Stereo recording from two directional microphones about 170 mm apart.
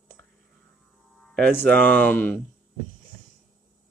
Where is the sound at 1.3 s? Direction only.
10° left (ahead or behind).